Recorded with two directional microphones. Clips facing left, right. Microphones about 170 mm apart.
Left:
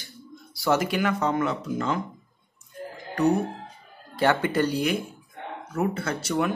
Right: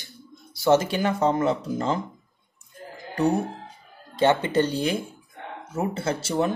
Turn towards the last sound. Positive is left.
turn(degrees=-30)  # may be behind; listen again after turning